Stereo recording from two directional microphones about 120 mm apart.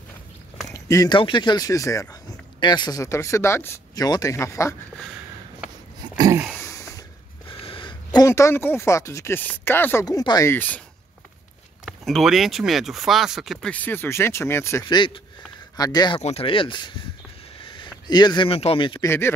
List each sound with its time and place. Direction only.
0.7 s a sound: 25° left (ahead or behind)
1.1 s speech: 40° left (ahead or behind); by 4.7 s 25° left (ahead or behind)
6.6 s a sound: 25° left (ahead or behind)
7.4 s a sound: 45° left (ahead or behind)
8.3 s speech: 20° left (ahead or behind)
10.0 s speech: 35° left (ahead or behind)
10.5 s speech: 15° left (ahead or behind)
11.8 s speech: centre (ahead or behind)
13.7 s speech: 15° left (ahead or behind)
14.9 s speech: 40° left (ahead or behind)
16.2 s speech: 60° left (ahead or behind); by 17.0 s 40° left (ahead or behind)
18.0 s speech: 35° left (ahead or behind)
18.5 s speech: 50° left (ahead or behind)
19.0 s speech: 20° left (ahead or behind)